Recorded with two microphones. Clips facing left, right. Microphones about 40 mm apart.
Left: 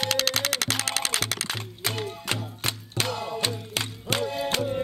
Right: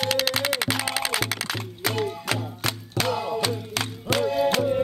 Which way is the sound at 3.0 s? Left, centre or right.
Right.